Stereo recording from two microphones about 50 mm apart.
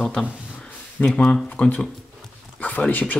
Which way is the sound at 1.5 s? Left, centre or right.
Left.